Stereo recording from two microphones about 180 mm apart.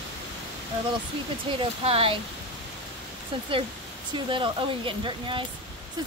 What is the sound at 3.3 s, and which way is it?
Speech, 30° right (ahead or behind).